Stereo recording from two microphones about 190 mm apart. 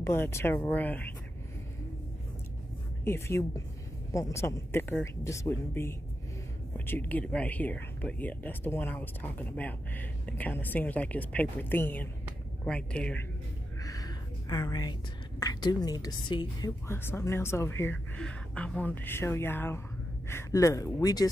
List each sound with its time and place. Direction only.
0.0 s speech: 15° left (ahead or behind)
3.1 s speech: 15° left (ahead or behind)
13.8 s a woman's voice: 20° left (ahead or behind)
16.8 s speech: 10° left (ahead or behind)